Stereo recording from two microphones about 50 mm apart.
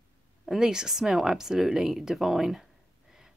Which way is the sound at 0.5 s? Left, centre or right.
Centre.